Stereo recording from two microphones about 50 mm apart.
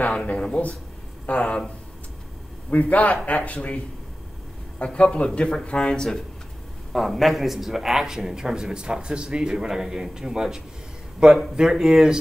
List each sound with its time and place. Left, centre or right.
0.2 s speech: left
2.7 s speech: left; by 6.2 s centre
6.9 s a man's voice: centre